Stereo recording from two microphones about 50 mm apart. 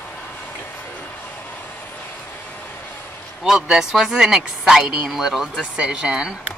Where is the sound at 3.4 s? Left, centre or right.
Centre.